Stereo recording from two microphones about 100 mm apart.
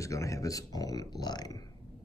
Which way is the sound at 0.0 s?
30° left (ahead or behind).